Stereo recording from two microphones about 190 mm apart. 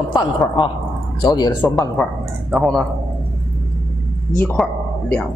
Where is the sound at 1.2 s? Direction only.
20° left (ahead or behind).